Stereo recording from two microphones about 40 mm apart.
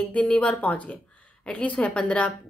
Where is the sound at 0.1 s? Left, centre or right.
Left.